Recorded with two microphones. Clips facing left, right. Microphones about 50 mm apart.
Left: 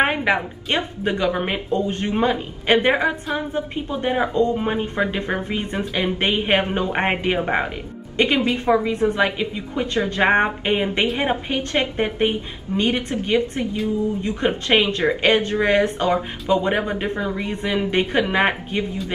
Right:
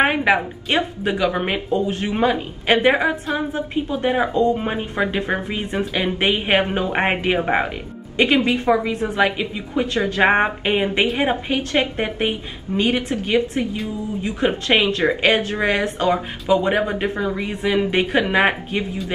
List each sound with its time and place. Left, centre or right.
0.0 s a woman's voice: centre
17.9 s speech: right
18.3 s a woman's voice: centre